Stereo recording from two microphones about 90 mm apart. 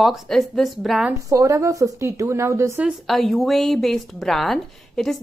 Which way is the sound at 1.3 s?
40° right (ahead or behind).